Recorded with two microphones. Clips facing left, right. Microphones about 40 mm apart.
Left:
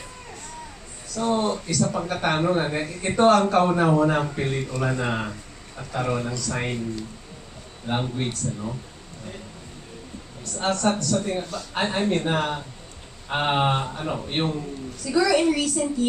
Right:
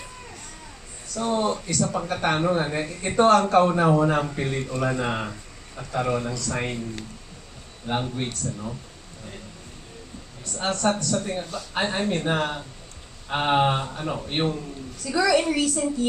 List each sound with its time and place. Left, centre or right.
1.1 s a man's voice: centre
7.9 s a man's voice: centre
10.4 s a man's voice: centre